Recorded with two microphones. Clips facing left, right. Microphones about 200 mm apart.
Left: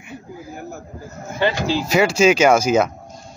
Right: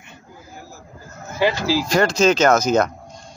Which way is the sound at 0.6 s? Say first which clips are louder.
Left 6 dB; 60° left (ahead or behind).